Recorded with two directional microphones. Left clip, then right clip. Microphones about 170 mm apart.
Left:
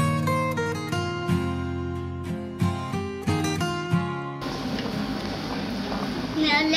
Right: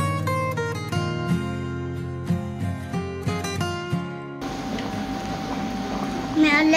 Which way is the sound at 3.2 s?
Centre (ahead or behind).